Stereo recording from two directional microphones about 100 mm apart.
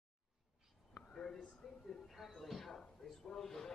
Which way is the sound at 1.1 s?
10° left (ahead or behind).